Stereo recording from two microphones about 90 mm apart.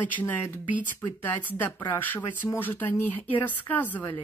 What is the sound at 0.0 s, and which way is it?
Speech, 20° left (ahead or behind).